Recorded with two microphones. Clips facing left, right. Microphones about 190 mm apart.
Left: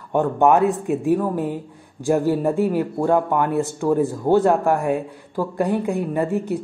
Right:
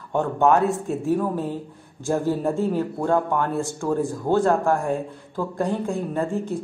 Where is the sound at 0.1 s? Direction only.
15° left (ahead or behind).